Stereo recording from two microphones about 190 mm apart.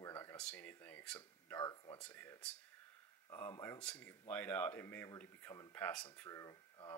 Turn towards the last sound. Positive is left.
turn(degrees=15)  # may be behind; listen again after turning